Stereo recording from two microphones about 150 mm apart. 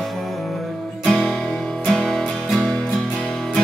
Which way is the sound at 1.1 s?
5° left (ahead or behind).